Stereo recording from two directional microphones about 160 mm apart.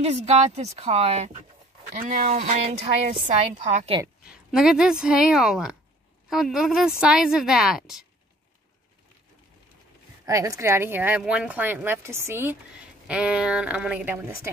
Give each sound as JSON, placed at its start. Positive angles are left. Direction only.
{"t": 0.0, "sound": "a woman's voice", "side_deg": -40}
{"t": 4.3, "sound": "a woman's voice", "side_deg": -5}
{"t": 10.2, "sound": "speech", "side_deg": -20}